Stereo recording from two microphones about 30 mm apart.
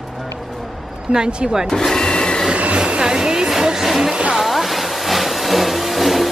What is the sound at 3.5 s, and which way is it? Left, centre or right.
Vehicle, centre.